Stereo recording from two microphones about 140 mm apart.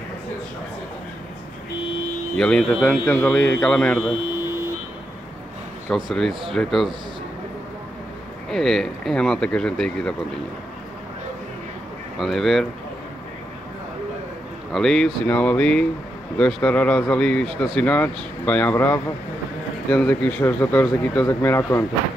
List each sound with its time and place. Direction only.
2.3 s speech: 5° left (ahead or behind)
6.0 s speech: centre (ahead or behind)
8.5 s speech: 5° left (ahead or behind)
12.2 s speech: centre (ahead or behind)
14.7 s speech: 5° left (ahead or behind)